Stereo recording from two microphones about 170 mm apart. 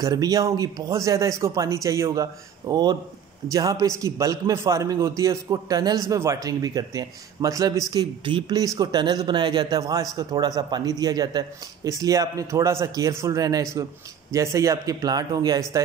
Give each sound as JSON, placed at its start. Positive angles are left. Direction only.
{"t": 0.0, "sound": "a man's voice", "side_deg": -20}